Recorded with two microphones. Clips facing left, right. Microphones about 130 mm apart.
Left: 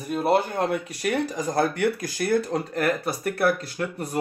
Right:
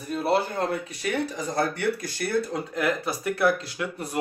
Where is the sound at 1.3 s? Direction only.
90° left.